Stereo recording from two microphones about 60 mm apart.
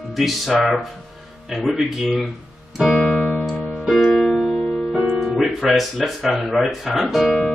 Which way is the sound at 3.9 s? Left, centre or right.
Centre.